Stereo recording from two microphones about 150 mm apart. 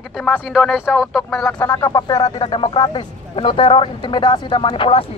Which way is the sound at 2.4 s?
35° left (ahead or behind).